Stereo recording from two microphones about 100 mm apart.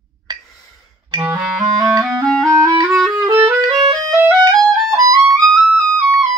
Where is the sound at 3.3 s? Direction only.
25° right (ahead or behind).